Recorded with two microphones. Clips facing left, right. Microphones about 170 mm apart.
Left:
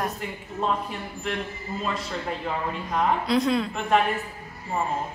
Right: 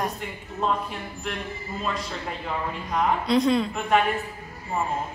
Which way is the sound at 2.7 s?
Centre (ahead or behind).